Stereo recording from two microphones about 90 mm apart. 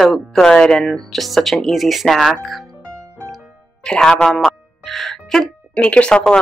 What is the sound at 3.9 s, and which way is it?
Music, 10° left (ahead or behind).